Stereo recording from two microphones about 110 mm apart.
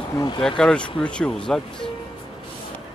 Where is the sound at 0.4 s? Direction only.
5° left (ahead or behind).